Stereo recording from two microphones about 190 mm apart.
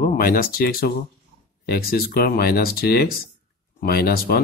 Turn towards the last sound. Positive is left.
turn(degrees=55)  # may be behind; listen again after turning